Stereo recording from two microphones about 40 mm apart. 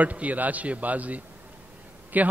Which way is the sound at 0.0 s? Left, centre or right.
Right.